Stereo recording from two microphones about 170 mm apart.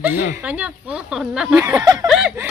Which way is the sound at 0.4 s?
10° right (ahead or behind).